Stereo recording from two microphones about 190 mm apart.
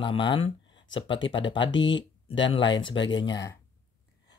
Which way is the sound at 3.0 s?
75° left (ahead or behind).